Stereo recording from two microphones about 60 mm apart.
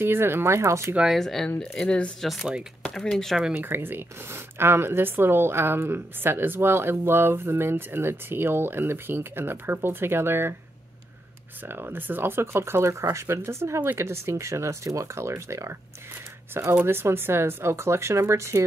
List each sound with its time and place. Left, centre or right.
0.0 s speech: right
1.1 s speech: centre
3.5 s speech: right
11.6 s speech: right
16.8 s speech: right